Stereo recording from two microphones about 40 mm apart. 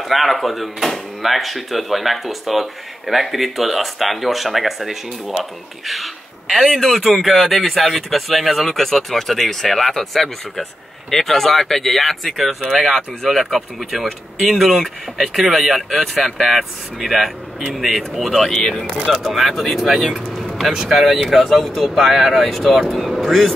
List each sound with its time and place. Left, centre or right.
0.0 s speech: centre
18.5 s speech: centre
18.9 s speech: centre
19.3 s speech: centre